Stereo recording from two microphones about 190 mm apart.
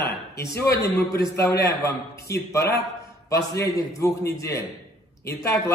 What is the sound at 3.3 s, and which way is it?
Speech, 60° left (ahead or behind).